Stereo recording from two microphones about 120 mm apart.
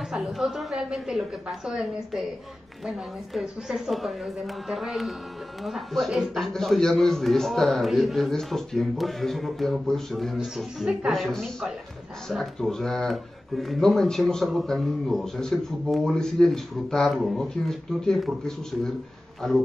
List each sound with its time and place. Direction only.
0.1 s speech: 5° right (ahead or behind)
3.3 s speech: 5° right (ahead or behind)